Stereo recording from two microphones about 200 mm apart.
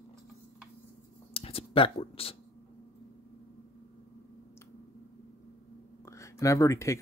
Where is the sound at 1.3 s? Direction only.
30° left (ahead or behind).